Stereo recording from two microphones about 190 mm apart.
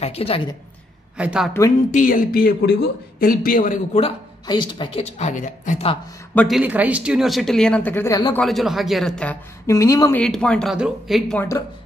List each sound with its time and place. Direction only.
0.0 s a woman's voice: 30° left (ahead or behind)
1.1 s a woman's voice: 5° right (ahead or behind)
1.9 s speech: 45° left (ahead or behind)
4.5 s a woman's voice: 25° left (ahead or behind); by 5.9 s 40° left (ahead or behind)
6.3 s speech: centre (ahead or behind); by 8.4 s 15° left (ahead or behind)
8.4 s a woman's voice: centre (ahead or behind); by 10.2 s 15° left (ahead or behind)
10.2 s speech: 5° left (ahead or behind)